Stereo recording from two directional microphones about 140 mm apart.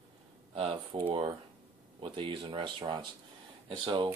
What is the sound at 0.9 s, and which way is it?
Speech, 30° right (ahead or behind).